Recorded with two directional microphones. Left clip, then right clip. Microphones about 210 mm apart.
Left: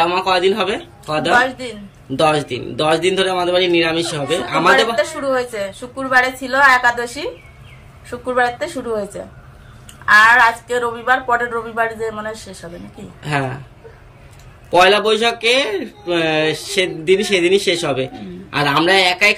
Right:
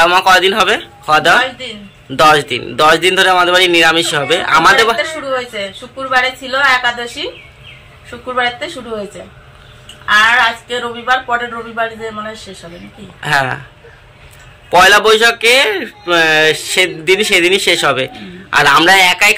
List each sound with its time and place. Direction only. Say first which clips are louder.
0.0 s a man's voice: right 7 dB; 10° left (ahead or behind)
2.1 s a man's voice: right 7 dB; 5° left (ahead or behind)
5.3 s a woman's voice: right 1 dB; 20° left (ahead or behind)
10.0 s a woman's voice: even; 20° left (ahead or behind)
14.7 s a man's voice: right 5 dB; 5° left (ahead or behind)